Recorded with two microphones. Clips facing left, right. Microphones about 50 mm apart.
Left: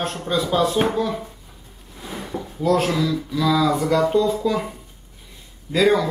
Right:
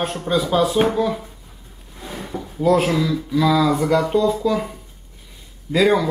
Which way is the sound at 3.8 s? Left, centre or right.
Centre.